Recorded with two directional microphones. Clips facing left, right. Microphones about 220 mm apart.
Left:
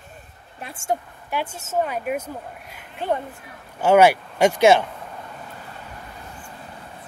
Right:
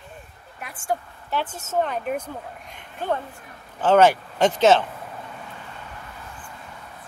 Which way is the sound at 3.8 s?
10° left (ahead or behind).